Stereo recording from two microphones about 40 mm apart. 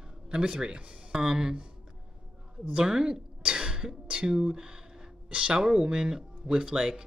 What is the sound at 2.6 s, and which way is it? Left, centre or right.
Speech, centre.